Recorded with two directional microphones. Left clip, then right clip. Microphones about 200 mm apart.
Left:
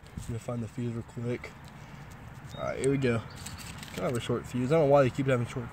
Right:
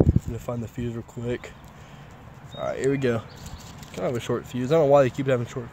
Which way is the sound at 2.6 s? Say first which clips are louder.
Right 4 dB; 30° right (ahead or behind).